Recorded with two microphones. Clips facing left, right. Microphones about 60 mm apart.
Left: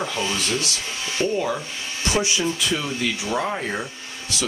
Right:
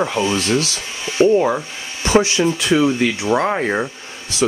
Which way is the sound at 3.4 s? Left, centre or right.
Right.